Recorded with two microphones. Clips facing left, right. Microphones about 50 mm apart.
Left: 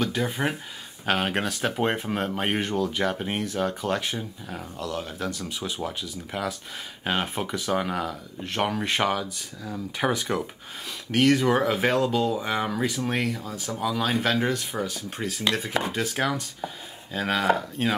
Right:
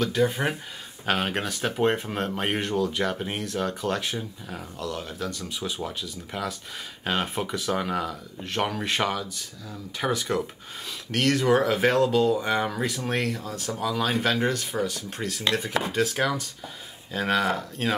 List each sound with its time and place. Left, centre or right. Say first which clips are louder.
0.0 s speech: right 2 dB; centre